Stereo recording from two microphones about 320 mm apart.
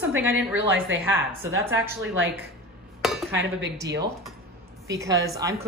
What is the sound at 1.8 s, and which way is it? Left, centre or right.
Speech, centre.